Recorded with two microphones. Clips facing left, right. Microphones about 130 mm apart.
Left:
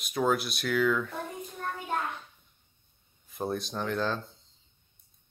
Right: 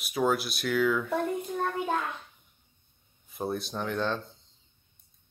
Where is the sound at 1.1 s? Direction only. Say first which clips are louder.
Right 9 dB; 80° right.